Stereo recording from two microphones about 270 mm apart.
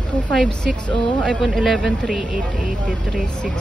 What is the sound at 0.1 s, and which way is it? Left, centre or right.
Speech, centre.